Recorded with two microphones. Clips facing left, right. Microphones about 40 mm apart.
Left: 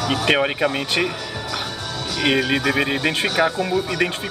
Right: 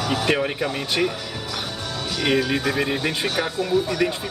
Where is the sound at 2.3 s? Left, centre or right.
Left.